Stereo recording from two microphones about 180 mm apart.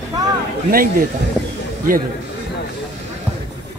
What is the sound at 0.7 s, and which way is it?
Speech, 55° right (ahead or behind).